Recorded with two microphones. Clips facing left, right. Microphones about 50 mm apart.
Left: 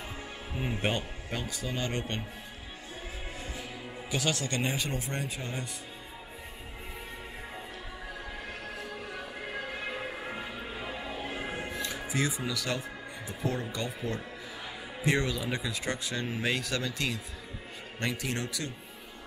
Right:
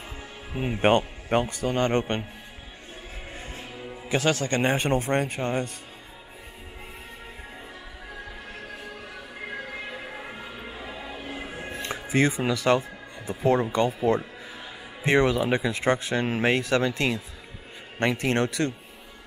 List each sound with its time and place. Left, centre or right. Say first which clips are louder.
0.7 s speech: right 13 dB; right
3.3 s music: right 2 dB; right
4.1 s speech: right 7 dB; right
9.8 s music: even; centre
11.7 s speech: right 11 dB; right